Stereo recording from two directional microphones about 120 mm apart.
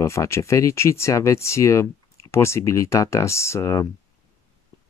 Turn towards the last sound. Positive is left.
turn(degrees=25)  # may be behind; listen again after turning